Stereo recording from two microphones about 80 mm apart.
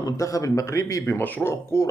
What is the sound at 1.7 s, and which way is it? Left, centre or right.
Speech, left.